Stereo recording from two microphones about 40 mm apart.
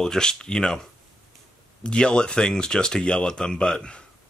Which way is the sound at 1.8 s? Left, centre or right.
Left.